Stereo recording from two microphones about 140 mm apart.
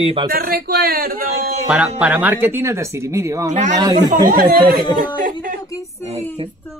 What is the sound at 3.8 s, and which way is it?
Speech, 30° right (ahead or behind).